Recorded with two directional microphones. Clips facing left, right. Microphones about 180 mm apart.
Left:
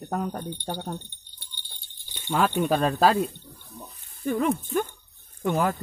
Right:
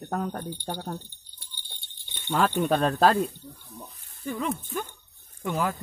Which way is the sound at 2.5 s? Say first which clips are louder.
Left 1 dB; 15° left (ahead or behind).